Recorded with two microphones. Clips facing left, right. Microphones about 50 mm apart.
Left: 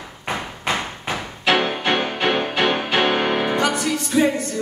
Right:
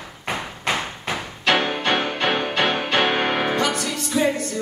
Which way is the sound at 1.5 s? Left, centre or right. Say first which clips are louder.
Left 1 dB; centre.